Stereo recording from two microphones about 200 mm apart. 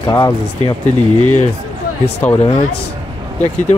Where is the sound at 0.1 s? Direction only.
20° left (ahead or behind).